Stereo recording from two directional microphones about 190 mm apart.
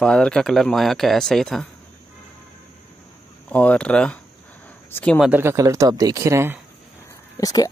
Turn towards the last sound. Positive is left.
turn(degrees=20)  # may be behind; listen again after turning